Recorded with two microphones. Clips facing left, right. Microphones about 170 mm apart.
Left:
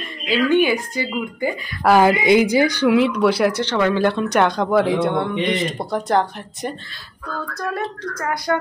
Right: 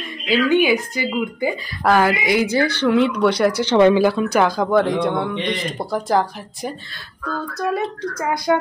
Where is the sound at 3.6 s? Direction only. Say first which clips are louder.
Right 6 dB; 20° right (ahead or behind).